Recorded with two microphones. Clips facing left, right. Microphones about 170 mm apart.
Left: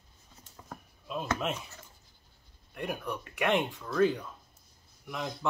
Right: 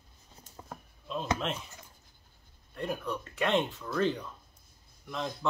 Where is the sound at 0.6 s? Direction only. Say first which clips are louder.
Right 1 dB; 30° right (ahead or behind).